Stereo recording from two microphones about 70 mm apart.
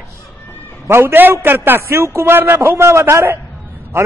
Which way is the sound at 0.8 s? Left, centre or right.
Right.